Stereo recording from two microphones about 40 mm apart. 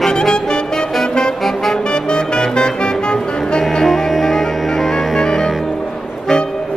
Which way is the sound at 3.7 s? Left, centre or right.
Centre.